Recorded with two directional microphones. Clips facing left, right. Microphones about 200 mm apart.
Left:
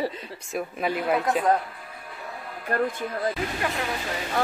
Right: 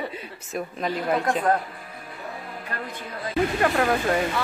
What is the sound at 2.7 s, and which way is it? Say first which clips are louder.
Speech: left 11 dB; 50° left (ahead or behind).